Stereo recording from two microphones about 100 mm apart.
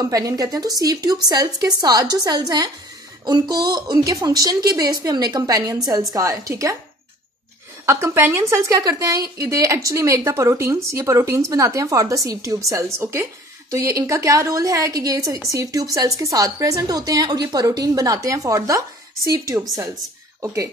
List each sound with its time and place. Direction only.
0.0 s a woman's voice: 35° right (ahead or behind)
7.8 s a woman's voice: 30° right (ahead or behind)